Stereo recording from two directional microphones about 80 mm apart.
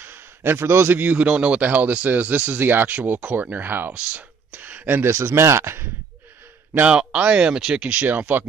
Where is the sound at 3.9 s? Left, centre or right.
Centre.